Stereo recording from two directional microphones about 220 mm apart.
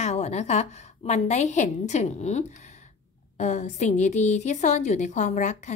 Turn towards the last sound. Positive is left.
turn(degrees=30)  # may be behind; listen again after turning